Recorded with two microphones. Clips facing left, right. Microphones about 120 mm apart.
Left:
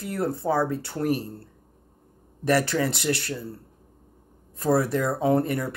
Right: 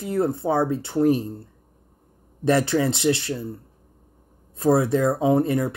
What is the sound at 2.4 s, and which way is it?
Speech, 20° right (ahead or behind).